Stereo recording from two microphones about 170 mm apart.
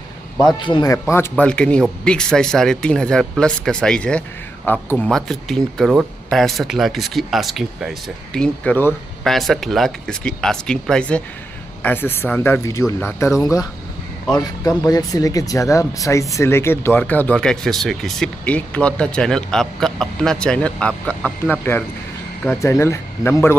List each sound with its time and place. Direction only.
0.6 s speech: 25° left (ahead or behind)
1.1 s speech: 10° left (ahead or behind)